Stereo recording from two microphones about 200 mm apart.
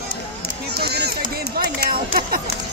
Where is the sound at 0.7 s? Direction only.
55° right (ahead or behind).